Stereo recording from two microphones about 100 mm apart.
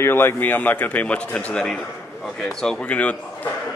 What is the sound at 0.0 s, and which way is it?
A man's voice, 25° left (ahead or behind).